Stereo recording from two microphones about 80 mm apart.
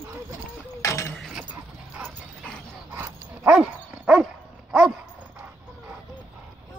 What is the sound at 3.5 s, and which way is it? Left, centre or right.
Dog, centre.